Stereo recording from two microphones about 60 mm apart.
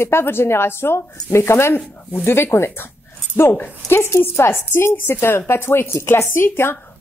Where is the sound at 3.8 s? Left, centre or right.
Left.